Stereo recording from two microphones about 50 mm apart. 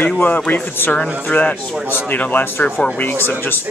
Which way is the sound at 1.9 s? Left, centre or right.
Left.